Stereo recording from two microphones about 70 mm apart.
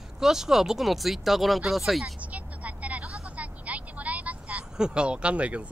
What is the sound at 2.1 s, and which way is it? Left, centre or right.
Vehicle, right.